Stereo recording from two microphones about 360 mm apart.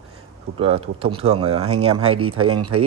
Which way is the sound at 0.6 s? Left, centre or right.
Centre.